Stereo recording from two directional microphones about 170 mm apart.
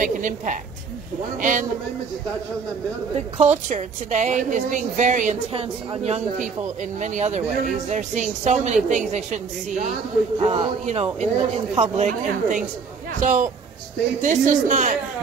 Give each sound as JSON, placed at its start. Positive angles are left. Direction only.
{"t": 0.0, "sound": "a woman's voice", "side_deg": -50}
{"t": 3.3, "sound": "a woman's voice", "side_deg": -45}